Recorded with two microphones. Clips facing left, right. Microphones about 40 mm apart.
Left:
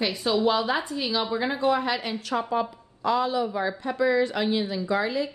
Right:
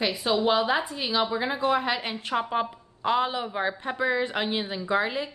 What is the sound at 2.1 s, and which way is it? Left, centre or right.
A woman's voice, right.